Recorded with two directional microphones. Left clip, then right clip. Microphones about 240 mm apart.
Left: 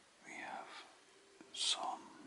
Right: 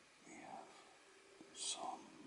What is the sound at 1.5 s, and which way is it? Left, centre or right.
Whispering, centre.